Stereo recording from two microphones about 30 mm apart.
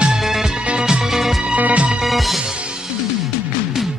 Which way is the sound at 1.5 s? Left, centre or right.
Right.